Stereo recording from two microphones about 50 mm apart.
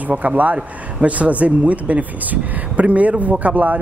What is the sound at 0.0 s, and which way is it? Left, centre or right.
Speech, right.